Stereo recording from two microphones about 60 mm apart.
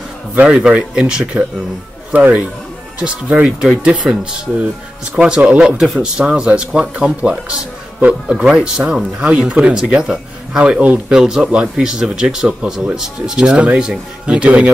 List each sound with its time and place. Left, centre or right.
0.3 s speech: right
2.1 s speech: right